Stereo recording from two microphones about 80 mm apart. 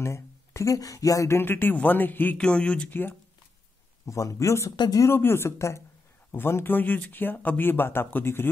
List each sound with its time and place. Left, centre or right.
0.0 s speech: left
1.4 s speech: left
2.3 s speech: centre
4.0 s speech: left
4.7 s speech: left
5.0 s speech: left